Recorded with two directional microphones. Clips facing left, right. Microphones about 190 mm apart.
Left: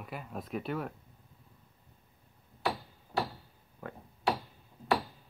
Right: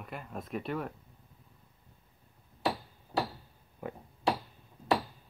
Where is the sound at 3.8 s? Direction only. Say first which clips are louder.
Right 4 dB; 15° right (ahead or behind).